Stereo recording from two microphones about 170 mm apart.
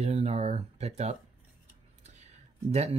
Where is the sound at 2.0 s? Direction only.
40° right (ahead or behind).